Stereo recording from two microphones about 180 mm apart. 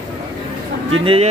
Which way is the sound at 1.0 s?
30° right (ahead or behind).